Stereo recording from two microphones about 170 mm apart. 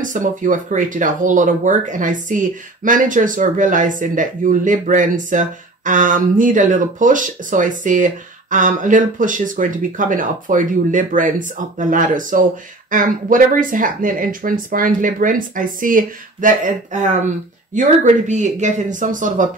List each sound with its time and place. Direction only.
0.0 s speech: 50° right (ahead or behind)